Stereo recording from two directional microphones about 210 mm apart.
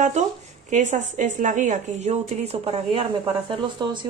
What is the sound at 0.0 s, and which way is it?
A woman's voice, 35° right (ahead or behind).